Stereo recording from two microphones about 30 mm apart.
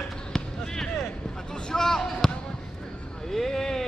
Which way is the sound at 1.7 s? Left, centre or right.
Centre.